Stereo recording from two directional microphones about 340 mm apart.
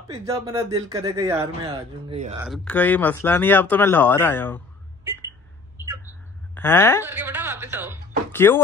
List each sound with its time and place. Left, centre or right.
0.1 s speech: centre
2.0 s speech: centre
2.4 s speech: centre
6.5 s a woman's voice: centre
7.1 s speech: centre
8.3 s speech: centre